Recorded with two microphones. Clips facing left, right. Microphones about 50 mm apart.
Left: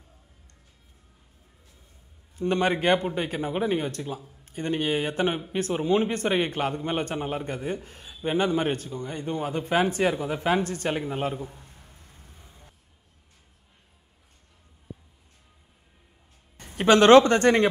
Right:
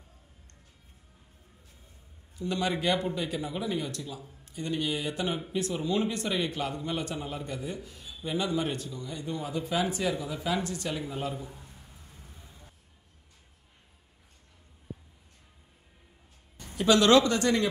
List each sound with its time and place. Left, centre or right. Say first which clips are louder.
2.3 s a man's voice: left 6 dB; left
12.3 s vehicle: even; left
16.5 s speech: left 5 dB; left